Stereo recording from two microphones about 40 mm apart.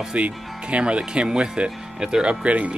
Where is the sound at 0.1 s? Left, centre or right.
Right.